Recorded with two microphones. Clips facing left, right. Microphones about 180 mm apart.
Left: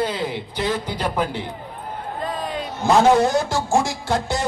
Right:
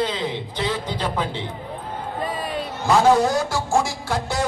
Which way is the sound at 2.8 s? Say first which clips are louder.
Left 1 dB; 20° left (ahead or behind).